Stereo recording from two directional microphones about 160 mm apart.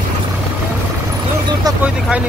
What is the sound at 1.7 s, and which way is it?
Speech, 25° right (ahead or behind).